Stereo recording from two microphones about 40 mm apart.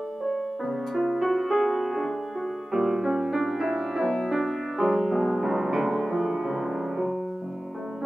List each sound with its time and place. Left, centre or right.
0.3 s music: centre